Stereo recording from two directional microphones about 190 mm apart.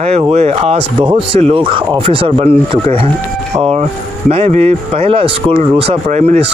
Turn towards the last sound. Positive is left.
turn(degrees=-35)  # may be behind; listen again after turning